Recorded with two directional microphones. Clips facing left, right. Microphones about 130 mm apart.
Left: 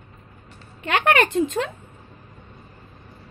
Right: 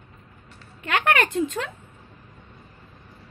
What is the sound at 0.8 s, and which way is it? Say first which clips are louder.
Speech: left 3 dB; 25° left (ahead or behind).